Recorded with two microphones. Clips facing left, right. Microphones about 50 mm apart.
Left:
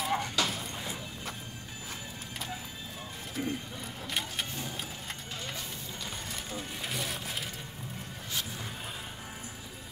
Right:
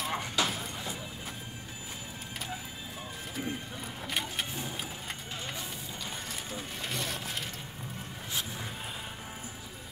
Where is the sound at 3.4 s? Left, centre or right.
Centre.